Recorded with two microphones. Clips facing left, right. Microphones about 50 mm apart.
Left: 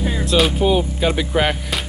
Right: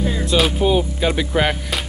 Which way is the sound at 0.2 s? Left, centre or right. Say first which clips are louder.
Left 2 dB; centre.